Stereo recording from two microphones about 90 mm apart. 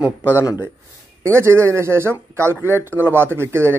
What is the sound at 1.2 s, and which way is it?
Speech, 30° right (ahead or behind).